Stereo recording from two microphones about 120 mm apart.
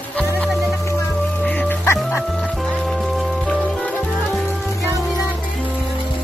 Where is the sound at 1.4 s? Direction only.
15° left (ahead or behind).